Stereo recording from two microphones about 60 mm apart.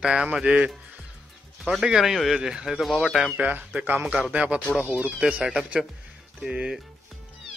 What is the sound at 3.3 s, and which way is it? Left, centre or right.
Speech, right.